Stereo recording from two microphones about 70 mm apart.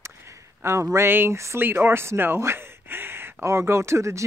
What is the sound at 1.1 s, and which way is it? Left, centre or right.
Speech, right.